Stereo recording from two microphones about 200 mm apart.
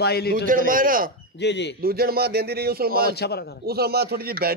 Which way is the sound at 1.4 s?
60° left (ahead or behind).